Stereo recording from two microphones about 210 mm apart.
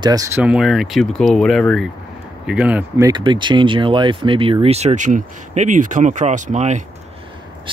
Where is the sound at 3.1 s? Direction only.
20° right (ahead or behind).